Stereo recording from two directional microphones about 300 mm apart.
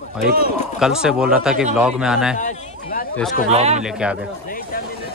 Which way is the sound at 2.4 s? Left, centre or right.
Left.